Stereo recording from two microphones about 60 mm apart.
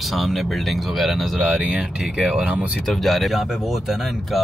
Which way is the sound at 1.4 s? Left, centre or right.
Centre.